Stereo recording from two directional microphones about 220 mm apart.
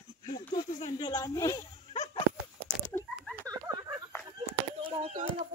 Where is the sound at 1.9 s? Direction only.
30° left (ahead or behind).